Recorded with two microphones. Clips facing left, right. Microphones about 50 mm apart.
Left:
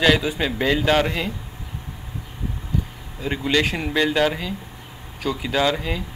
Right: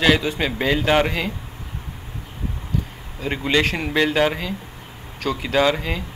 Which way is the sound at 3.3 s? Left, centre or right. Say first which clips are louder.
Right 1 dB; centre.